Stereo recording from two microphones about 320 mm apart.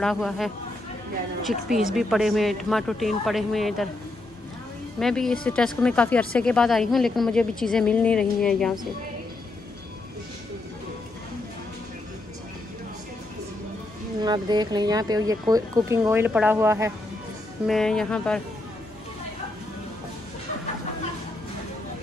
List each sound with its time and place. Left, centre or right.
0.0 s a woman's voice: centre
4.9 s a woman's voice: centre
14.2 s a woman's voice: centre